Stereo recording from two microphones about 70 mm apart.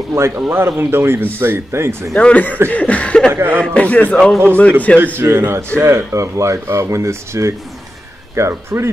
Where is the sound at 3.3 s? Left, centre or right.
Right.